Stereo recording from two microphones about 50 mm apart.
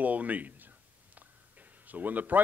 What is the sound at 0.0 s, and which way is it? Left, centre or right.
A man's voice, right.